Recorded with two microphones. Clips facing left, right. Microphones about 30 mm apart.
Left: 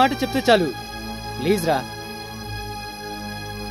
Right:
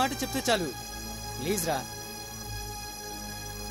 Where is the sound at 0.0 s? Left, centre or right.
Left.